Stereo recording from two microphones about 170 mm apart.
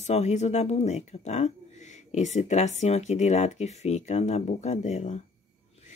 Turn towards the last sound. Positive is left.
turn(degrees=40)  # may be behind; listen again after turning